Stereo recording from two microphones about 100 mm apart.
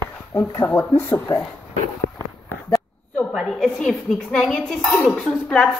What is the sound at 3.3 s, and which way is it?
A woman's voice, centre (ahead or behind).